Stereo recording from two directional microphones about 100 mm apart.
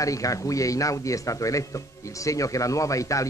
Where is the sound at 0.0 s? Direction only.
35° left (ahead or behind).